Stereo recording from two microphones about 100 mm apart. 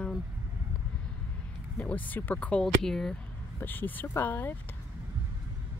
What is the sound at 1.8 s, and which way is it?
Speech, 15° left (ahead or behind).